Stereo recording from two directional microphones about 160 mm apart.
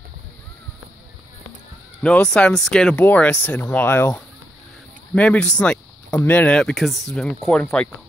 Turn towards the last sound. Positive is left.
turn(degrees=5)  # may be behind; listen again after turning